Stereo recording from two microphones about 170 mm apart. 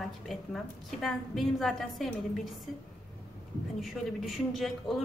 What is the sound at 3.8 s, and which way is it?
A woman's voice, centre (ahead or behind).